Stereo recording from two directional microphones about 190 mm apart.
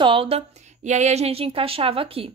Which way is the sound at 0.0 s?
30° right (ahead or behind).